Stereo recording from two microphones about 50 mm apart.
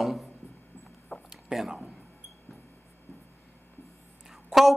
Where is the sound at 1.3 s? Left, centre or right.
Centre.